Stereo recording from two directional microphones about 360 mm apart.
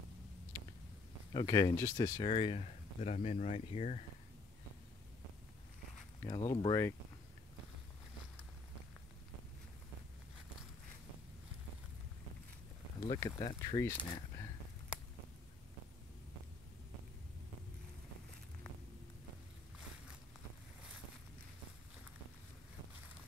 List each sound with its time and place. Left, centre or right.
1.3 s speech: centre
6.2 s speech: centre
13.0 s speech: centre